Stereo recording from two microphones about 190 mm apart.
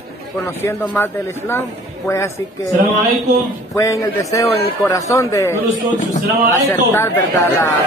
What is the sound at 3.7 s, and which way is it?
A man's voice, 15° left (ahead or behind).